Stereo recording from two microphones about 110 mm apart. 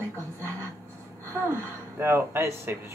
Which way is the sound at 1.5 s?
20° right (ahead or behind).